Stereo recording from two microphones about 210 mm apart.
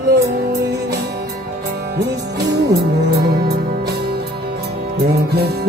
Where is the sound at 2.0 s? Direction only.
50° right (ahead or behind).